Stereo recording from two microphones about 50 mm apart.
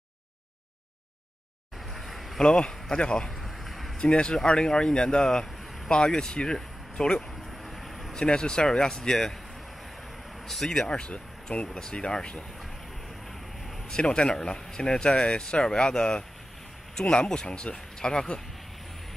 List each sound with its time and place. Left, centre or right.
1.9 s a sound: centre
2.4 s speech: centre
3.4 s a sound: centre
4.0 s speech: left
7.6 s a sound: centre
8.2 s speech: centre
10.4 s speech: centre
10.9 s speech: centre
13.8 s speech: centre